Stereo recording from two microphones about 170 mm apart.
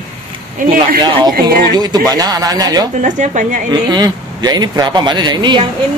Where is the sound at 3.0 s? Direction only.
45° right (ahead or behind).